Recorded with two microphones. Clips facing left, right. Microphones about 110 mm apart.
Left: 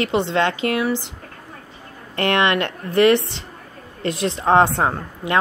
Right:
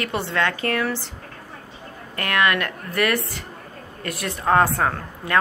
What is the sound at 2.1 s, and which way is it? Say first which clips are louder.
A woman's voice: left 3 dB; 25° left (ahead or behind).